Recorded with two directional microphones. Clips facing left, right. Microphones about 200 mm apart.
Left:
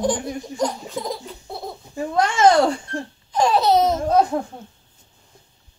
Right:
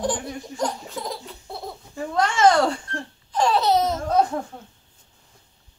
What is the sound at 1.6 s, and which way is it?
Babbling, 20° left (ahead or behind).